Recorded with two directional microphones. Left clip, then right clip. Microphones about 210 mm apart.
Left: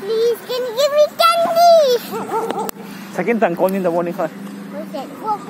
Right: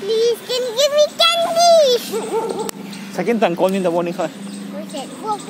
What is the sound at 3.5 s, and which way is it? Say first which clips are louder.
Speech: even; 20° right (ahead or behind).